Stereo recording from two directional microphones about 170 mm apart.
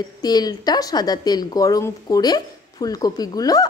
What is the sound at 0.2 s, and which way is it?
A woman's voice, 25° left (ahead or behind).